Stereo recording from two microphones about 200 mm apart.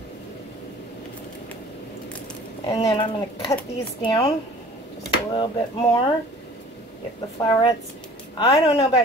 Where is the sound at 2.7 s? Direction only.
25° left (ahead or behind).